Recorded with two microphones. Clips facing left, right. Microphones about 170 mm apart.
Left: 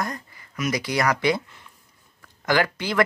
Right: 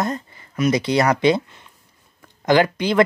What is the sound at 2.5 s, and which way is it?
Speech, 20° right (ahead or behind).